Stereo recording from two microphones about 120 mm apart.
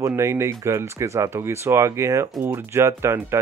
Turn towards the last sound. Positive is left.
turn(degrees=-20)  # may be behind; listen again after turning